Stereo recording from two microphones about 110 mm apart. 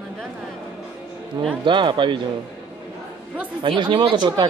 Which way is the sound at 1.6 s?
45° right (ahead or behind).